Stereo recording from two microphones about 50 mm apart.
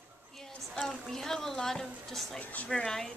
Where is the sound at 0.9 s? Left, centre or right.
Centre.